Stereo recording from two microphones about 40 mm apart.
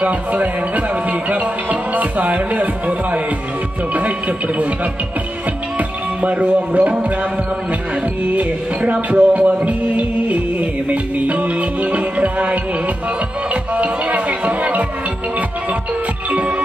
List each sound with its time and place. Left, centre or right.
0.0 s music: right
5.8 s music: right
8.4 s music: right
9.7 s music: right
13.5 s speech: right